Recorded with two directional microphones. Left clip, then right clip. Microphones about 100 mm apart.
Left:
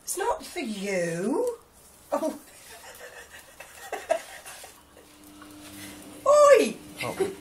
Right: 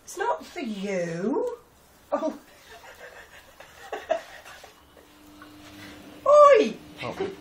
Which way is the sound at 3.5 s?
20° left (ahead or behind).